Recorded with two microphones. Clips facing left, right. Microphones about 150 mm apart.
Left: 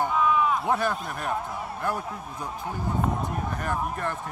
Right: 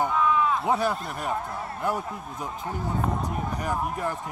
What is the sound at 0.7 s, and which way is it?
Speech, 15° right (ahead or behind).